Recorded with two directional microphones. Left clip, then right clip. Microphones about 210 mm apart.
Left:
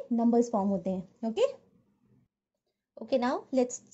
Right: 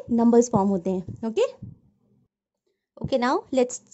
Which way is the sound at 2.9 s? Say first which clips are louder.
Right 6 dB; 25° right (ahead or behind).